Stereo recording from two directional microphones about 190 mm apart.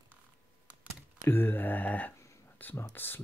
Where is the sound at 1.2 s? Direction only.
10° left (ahead or behind).